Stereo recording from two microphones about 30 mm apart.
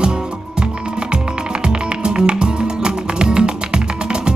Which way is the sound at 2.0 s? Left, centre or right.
Right.